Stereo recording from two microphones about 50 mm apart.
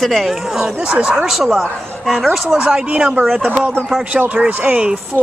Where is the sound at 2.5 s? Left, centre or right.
Centre.